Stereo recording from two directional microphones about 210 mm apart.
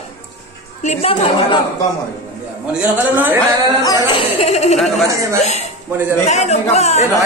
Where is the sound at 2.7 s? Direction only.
5° right (ahead or behind).